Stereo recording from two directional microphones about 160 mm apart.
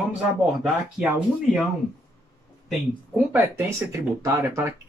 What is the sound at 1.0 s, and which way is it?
Speech, 5° right (ahead or behind).